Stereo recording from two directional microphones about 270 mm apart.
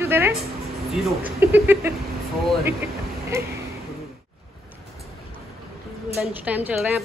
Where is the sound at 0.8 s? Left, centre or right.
Centre.